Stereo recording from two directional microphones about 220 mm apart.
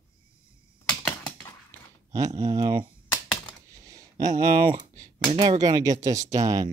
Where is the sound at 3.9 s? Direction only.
15° right (ahead or behind).